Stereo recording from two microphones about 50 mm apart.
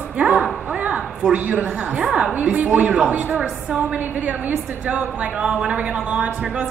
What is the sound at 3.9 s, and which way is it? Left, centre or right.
A woman's voice, right.